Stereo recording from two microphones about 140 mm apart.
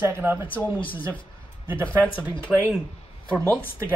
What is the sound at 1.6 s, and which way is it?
Speech, 15° right (ahead or behind).